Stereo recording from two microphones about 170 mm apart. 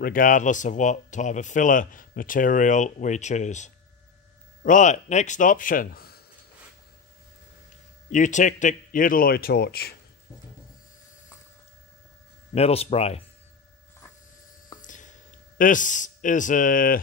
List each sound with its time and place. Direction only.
0.0 s speech: 55° left (ahead or behind)
8.1 s a man's voice: 45° left (ahead or behind); by 9.9 s 65° left (ahead or behind)
12.5 s speech: 35° left (ahead or behind)
14.8 s a sound: 50° left (ahead or behind)